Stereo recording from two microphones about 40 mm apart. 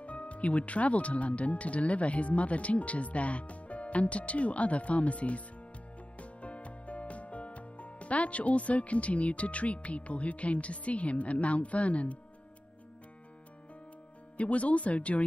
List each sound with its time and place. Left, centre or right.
0.0 s speech: left
6.1 s music: left
14.3 s speech: left